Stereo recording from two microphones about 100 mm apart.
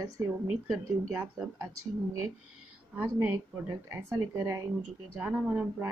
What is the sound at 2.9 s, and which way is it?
A woman's voice, 25° right (ahead or behind).